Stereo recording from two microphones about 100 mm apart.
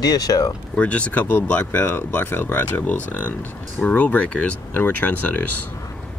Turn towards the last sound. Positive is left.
turn(degrees=15)  # may be behind; listen again after turning